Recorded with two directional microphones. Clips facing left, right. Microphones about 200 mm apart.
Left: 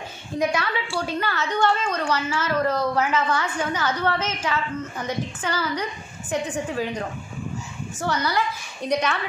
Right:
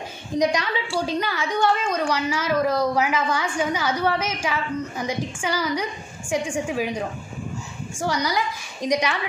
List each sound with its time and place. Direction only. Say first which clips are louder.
0.4 s a woman's voice: right 2 dB; 15° right (ahead or behind)